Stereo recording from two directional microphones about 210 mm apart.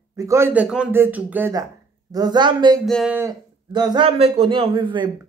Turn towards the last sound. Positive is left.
turn(degrees=-25)  # may be behind; listen again after turning